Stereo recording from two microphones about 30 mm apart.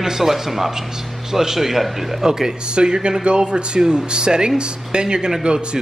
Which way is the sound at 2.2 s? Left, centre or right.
Centre.